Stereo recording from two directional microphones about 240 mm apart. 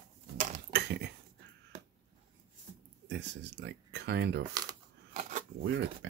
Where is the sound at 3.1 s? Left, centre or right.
Right.